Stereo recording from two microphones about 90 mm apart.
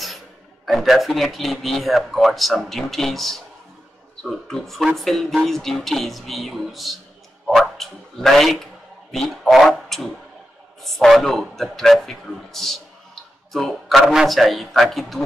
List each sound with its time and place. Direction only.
0.7 s speech: centre (ahead or behind)